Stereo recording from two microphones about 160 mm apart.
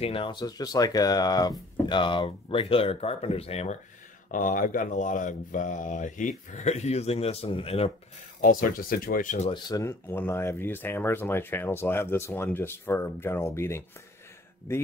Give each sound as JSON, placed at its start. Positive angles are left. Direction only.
{"t": 0.0, "sound": "speech", "side_deg": 35}
{"t": 4.3, "sound": "speech", "side_deg": 55}
{"t": 8.4, "sound": "speech", "side_deg": 60}
{"t": 9.5, "sound": "speech", "side_deg": 20}